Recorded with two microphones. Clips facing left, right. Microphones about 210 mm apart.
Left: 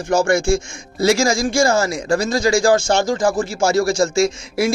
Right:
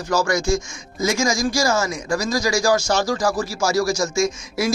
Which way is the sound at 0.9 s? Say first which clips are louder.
Left 6 dB; 75° left (ahead or behind).